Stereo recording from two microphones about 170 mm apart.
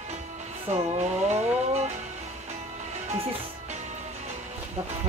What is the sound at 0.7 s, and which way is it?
Music, 40° right (ahead or behind).